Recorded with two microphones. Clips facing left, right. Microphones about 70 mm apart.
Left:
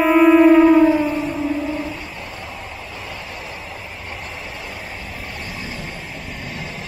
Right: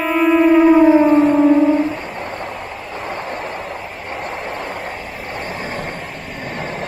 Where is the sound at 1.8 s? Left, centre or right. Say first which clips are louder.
Right 6 dB; right.